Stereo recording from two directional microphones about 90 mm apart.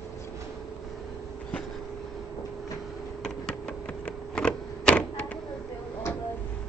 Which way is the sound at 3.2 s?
10° left (ahead or behind).